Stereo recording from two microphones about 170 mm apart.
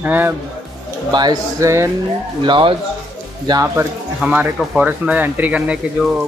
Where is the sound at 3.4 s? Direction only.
20° right (ahead or behind).